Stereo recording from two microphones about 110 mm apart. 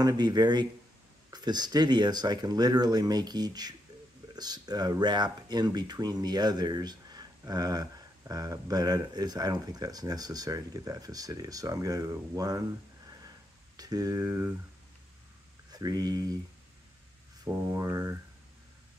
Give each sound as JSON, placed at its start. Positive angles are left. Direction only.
{"t": 0.0, "sound": "speech", "side_deg": -40}
{"t": 13.7, "sound": "speech", "side_deg": -35}
{"t": 15.7, "sound": "speech", "side_deg": -35}
{"t": 17.5, "sound": "speech", "side_deg": -25}